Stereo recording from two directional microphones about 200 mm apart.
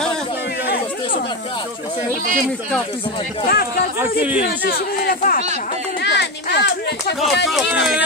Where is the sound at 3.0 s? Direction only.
25° left (ahead or behind).